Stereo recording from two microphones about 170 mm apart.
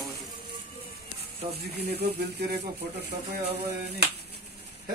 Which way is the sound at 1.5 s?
70° right (ahead or behind).